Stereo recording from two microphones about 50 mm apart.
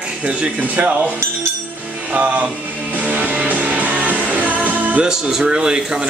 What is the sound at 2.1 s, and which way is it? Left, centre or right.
Music, right.